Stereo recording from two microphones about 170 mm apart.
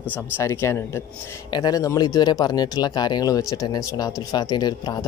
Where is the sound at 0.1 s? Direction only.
15° left (ahead or behind).